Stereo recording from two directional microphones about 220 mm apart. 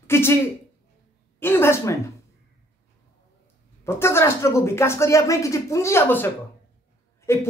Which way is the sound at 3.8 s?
10° left (ahead or behind).